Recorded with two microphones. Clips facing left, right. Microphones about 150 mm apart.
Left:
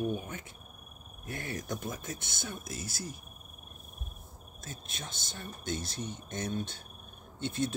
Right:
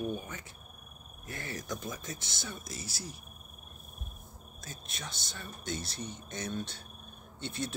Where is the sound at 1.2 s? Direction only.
55° left (ahead or behind).